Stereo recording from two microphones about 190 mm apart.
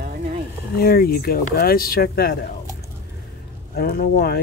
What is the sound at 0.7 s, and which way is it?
Speech, 50° left (ahead or behind).